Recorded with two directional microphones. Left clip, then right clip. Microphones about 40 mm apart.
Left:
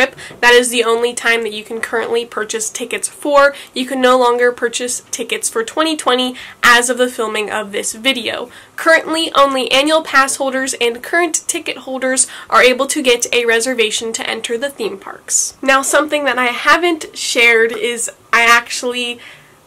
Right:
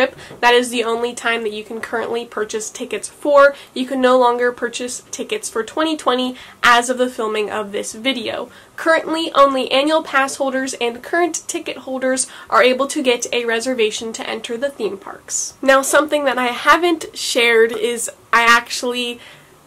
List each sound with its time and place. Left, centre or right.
0.0 s speech: left
15.6 s speech: centre